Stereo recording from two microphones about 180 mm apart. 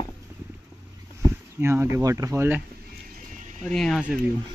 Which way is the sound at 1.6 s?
15° right (ahead or behind).